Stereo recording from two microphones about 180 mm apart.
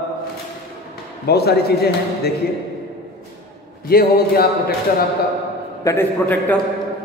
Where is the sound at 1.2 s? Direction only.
60° left (ahead or behind).